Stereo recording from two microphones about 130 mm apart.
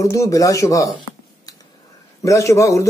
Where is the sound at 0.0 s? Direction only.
25° left (ahead or behind).